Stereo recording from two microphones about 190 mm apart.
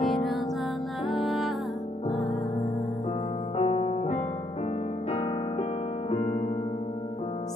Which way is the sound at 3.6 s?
35° left (ahead or behind).